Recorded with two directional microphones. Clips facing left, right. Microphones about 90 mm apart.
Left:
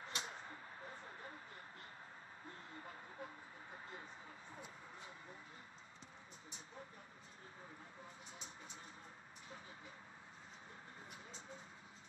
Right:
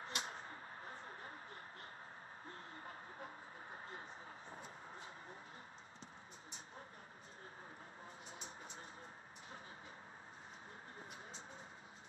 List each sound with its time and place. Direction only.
0.0 s arrow: 40° right (ahead or behind)
2.8 s vehicle: 45° right (ahead or behind)